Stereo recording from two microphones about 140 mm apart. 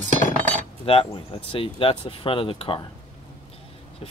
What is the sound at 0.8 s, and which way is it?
Speech, 40° left (ahead or behind).